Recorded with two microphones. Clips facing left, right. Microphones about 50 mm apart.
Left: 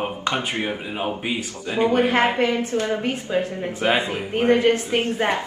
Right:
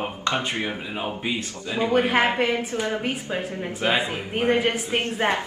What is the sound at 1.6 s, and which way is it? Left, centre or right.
Speech, left.